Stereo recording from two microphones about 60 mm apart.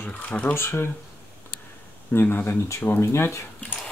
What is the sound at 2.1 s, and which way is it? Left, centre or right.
Speech, left.